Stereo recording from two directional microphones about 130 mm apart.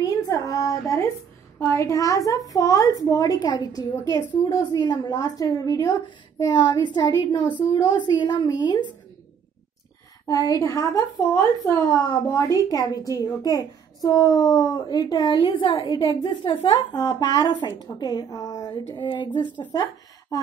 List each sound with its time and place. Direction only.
0.0 s a sound: 25° left (ahead or behind)
1.6 s a woman's voice: 20° left (ahead or behind)
10.2 s a woman's voice: 30° left (ahead or behind)